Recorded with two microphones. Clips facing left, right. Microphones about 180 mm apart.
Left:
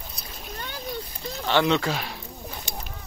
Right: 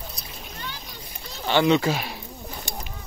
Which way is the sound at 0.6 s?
50° left (ahead or behind).